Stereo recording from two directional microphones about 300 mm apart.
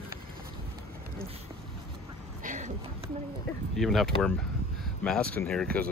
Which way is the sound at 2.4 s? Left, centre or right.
Right.